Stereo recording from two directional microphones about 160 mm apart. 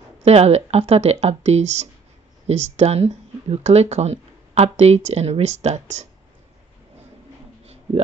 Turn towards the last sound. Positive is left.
turn(degrees=-40)  # may be behind; listen again after turning